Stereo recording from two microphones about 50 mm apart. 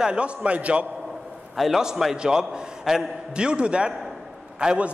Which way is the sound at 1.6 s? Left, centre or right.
Centre.